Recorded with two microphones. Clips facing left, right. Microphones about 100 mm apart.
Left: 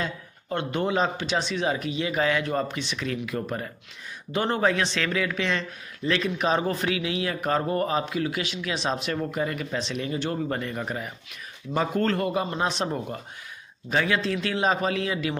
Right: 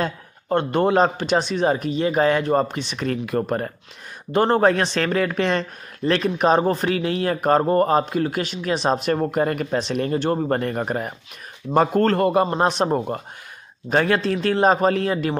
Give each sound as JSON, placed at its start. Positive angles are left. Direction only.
{"t": 0.0, "sound": "speech", "side_deg": -50}